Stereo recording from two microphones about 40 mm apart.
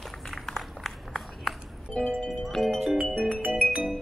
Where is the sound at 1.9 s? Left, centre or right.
Left.